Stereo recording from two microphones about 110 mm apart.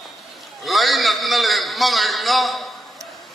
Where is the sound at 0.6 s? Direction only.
Centre (ahead or behind).